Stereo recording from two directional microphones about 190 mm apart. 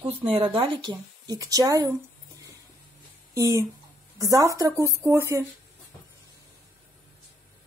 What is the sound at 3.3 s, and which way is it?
Speech, 15° right (ahead or behind).